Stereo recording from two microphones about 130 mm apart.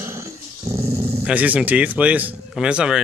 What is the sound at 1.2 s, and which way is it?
Speech, 10° right (ahead or behind).